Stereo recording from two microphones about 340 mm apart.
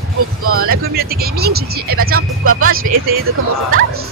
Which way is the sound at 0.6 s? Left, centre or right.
Right.